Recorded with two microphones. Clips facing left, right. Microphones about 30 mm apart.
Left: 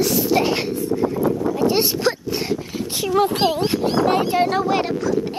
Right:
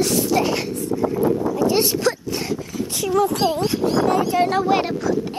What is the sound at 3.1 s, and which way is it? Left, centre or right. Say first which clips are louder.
Speech: left 1 dB; left.